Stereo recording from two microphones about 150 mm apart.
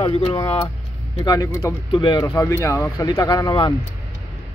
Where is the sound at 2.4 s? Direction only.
15° left (ahead or behind).